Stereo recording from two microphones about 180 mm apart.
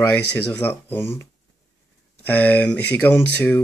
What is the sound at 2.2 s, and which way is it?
Speech, 10° left (ahead or behind).